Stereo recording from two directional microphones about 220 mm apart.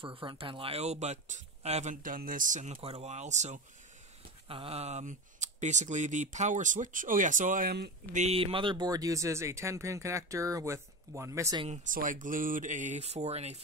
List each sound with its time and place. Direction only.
0.0 s speech: 25° right (ahead or behind); by 7.9 s 45° right (ahead or behind)
8.1 s speech: 30° right (ahead or behind); by 11.6 s 15° right (ahead or behind)
11.6 s speech: 35° right (ahead or behind)